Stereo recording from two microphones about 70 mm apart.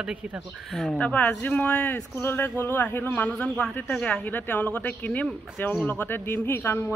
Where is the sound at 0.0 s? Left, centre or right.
Centre.